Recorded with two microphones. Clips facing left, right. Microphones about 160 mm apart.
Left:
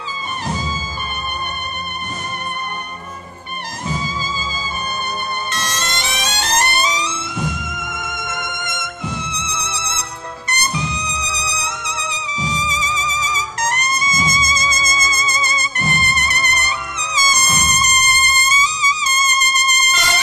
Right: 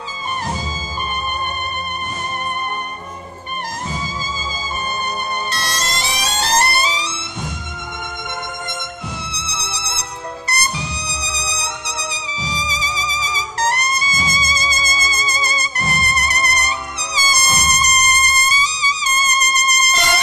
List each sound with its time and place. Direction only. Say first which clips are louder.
5.5 s music: even; 35° right (ahead or behind)
8.0 s violin: right 1 dB; 30° right (ahead or behind)
9.4 s music: left 2 dB; 35° right (ahead or behind)